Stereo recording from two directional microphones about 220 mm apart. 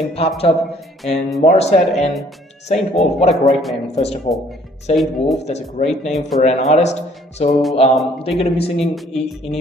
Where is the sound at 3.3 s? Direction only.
Centre (ahead or behind).